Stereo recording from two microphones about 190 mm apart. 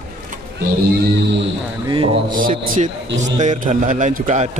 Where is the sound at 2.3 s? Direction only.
45° right (ahead or behind).